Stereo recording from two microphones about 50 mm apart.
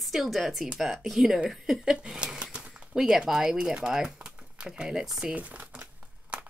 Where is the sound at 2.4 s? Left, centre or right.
Right.